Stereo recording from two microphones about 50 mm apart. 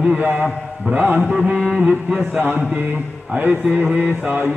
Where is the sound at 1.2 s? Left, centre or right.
Centre.